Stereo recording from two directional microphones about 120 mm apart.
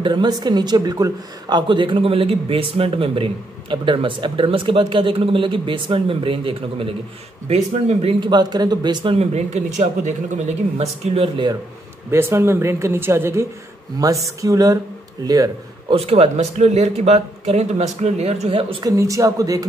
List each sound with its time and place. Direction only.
0.0 s speech: 40° right (ahead or behind)
1.7 s a man's voice: 45° right (ahead or behind)
7.4 s speech: 60° right (ahead or behind)
8.3 s speech: 35° right (ahead or behind)
9.1 s speech: 65° right (ahead or behind)
12.1 s speech: 20° right (ahead or behind)
15.9 s speech: 55° right (ahead or behind)
18.9 s speech: 25° right (ahead or behind)